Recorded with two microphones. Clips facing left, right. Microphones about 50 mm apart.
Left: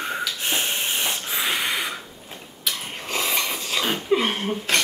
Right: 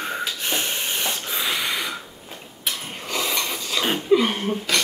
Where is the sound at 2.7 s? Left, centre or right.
Right.